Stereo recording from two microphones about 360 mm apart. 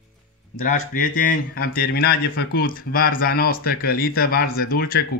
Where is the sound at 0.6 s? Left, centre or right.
Left.